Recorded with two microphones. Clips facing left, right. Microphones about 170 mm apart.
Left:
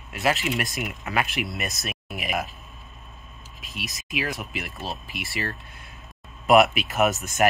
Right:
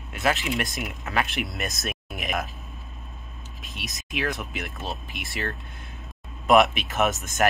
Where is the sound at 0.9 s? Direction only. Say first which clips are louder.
Left 1 dB; 15° left (ahead or behind).